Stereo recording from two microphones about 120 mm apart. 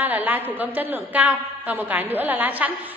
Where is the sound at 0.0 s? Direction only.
15° right (ahead or behind).